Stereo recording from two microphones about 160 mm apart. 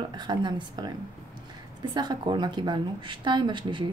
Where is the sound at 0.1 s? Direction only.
30° right (ahead or behind).